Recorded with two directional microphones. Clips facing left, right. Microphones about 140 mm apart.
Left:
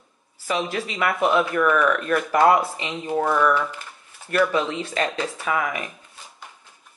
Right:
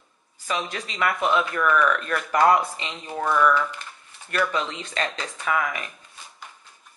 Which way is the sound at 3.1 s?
35° left (ahead or behind).